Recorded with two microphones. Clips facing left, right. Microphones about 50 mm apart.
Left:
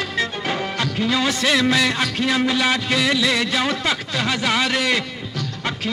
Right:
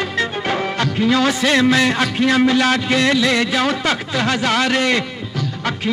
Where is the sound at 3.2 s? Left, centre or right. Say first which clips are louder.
Right 3 dB; centre.